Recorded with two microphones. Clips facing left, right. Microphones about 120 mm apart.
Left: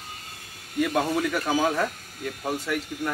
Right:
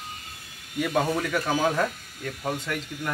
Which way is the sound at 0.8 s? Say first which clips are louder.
Left 1 dB; centre (ahead or behind).